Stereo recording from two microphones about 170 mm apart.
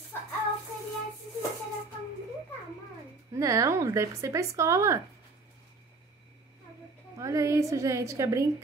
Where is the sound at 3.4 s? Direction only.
20° right (ahead or behind).